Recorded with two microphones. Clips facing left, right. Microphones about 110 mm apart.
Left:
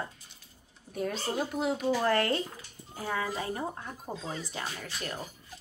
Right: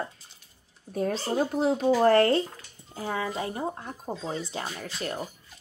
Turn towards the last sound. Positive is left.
turn(degrees=-35)  # may be behind; listen again after turning